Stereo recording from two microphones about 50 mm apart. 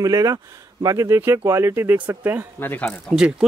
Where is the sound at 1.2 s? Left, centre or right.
Right.